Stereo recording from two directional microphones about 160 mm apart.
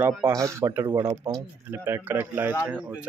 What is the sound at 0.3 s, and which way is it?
Speech, 20° right (ahead or behind).